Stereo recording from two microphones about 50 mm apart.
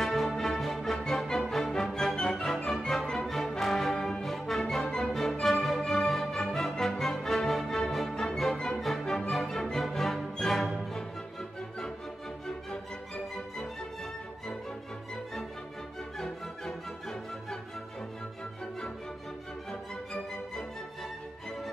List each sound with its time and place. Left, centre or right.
0.0 s music: centre
2.1 s music: centre
2.7 s music: centre
19.7 s music: centre